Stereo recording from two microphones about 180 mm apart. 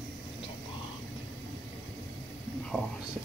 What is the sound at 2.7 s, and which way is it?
Speech, centre (ahead or behind).